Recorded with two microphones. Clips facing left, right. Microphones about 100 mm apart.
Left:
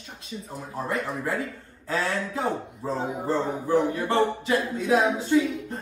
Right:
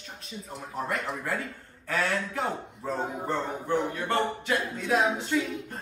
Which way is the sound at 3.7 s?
30° left (ahead or behind).